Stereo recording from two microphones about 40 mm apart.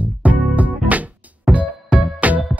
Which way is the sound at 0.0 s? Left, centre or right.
Right.